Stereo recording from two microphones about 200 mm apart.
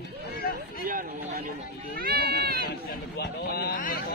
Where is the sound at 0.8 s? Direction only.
45° right (ahead or behind).